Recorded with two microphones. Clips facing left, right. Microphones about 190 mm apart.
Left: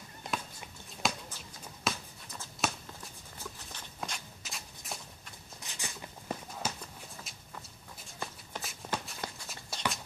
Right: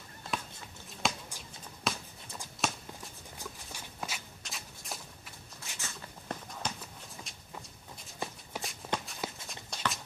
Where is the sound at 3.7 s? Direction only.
5° right (ahead or behind).